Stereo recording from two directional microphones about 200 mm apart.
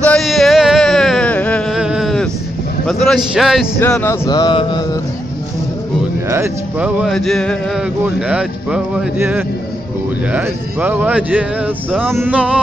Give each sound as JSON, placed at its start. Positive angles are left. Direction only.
{"t": 0.0, "sound": "a sound", "side_deg": 0}
{"t": 1.8, "sound": "a sound", "side_deg": -5}
{"t": 2.9, "sound": "a man's voice", "side_deg": 0}
{"t": 3.8, "sound": "speech", "side_deg": 10}
{"t": 4.3, "sound": "mantra", "side_deg": 20}
{"t": 6.3, "sound": "speech", "side_deg": -10}